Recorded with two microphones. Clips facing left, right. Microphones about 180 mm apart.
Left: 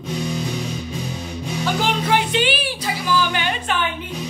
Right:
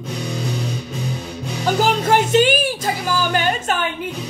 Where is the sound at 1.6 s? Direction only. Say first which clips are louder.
Right 4 dB; 40° right (ahead or behind).